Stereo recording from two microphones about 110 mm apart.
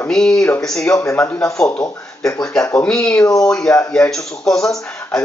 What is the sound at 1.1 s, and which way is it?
Speech, 5° left (ahead or behind).